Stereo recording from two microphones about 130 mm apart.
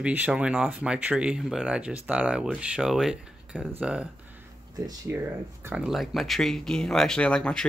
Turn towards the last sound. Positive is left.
turn(degrees=5)  # may be behind; listen again after turning